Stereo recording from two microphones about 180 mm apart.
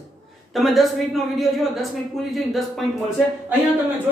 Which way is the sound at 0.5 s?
Centre (ahead or behind).